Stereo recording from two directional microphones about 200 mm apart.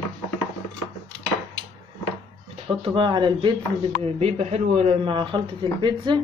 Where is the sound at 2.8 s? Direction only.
25° right (ahead or behind).